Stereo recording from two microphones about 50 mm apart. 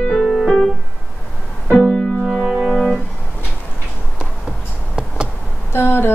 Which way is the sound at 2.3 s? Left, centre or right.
Centre.